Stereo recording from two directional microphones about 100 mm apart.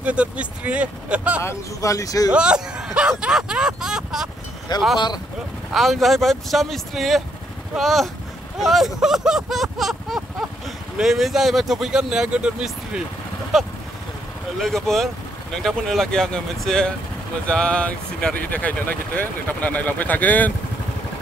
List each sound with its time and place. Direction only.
0.0 s speech: 10° right (ahead or behind)
1.4 s speech: 30° left (ahead or behind)
2.3 s speech: 10° right (ahead or behind)
4.7 s speech: 45° left (ahead or behind)
5.7 s speech: centre (ahead or behind)
14.6 s speech: centre (ahead or behind)